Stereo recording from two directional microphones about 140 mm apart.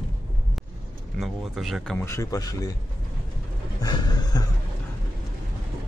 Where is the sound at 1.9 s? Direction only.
20° left (ahead or behind).